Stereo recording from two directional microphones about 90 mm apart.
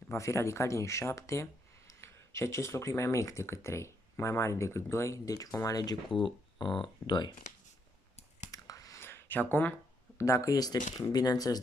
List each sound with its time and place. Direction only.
0.1 s speech: 30° left (ahead or behind)
6.1 s speech: 60° left (ahead or behind)
8.5 s whispering: 40° left (ahead or behind)
9.0 s a sound: 25° left (ahead or behind)
10.1 s speech: 35° left (ahead or behind)